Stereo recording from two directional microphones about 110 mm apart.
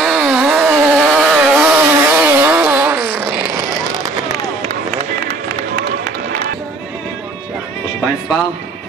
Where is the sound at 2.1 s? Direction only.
15° right (ahead or behind).